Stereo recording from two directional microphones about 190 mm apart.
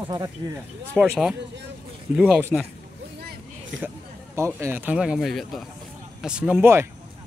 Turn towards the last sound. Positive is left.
turn(degrees=-10)  # may be behind; listen again after turning